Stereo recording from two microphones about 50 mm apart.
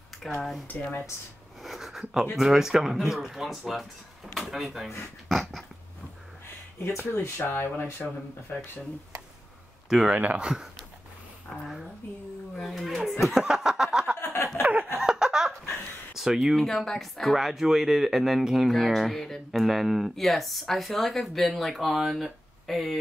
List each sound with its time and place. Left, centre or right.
0.4 s speech: centre
1.6 s a sound: centre
2.3 s speech: centre
5.3 s dog: centre
7.1 s speech: left
9.8 s speech: centre
10.1 s speech: right
10.4 s speech: centre
11.5 s speech: centre
13.2 s chuckle: centre
14.2 s a sound: left
14.6 s a sound: right
15.0 s a sound: centre
16.5 s speech: centre